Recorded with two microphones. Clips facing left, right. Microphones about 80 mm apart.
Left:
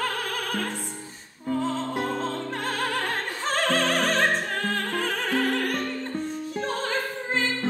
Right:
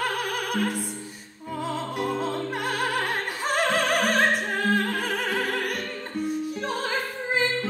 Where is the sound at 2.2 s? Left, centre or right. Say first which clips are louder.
Right 1 dB; centre.